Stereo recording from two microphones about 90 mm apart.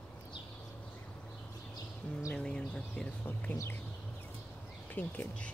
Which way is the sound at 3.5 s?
30° left (ahead or behind).